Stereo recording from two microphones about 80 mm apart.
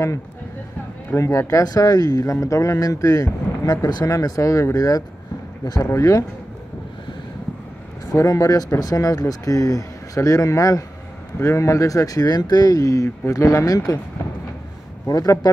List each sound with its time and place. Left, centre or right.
1.1 s speech: left
1.6 s speech: left
8.1 s speech: left
15.0 s speech: left